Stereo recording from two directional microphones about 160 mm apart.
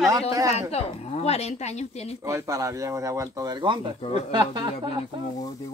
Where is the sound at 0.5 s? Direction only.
40° left (ahead or behind).